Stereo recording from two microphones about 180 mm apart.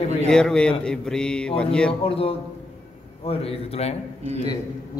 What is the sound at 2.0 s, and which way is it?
A man's voice, 30° left (ahead or behind).